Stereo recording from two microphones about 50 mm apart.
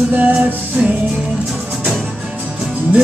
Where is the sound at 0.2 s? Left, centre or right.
Right.